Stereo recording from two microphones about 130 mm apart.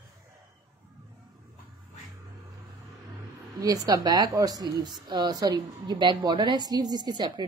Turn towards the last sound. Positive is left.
turn(degrees=-35)  # may be behind; listen again after turning